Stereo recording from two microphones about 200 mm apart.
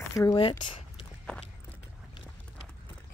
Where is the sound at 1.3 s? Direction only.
5° left (ahead or behind).